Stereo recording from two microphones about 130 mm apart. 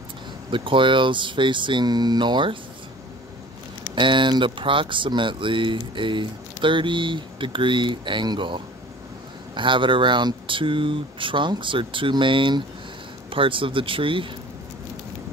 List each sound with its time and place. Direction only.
0.5 s speech: 40° right (ahead or behind)
3.9 s speech: 40° right (ahead or behind)